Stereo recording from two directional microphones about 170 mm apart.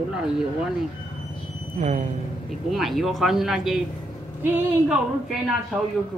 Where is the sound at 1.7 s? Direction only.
45° right (ahead or behind).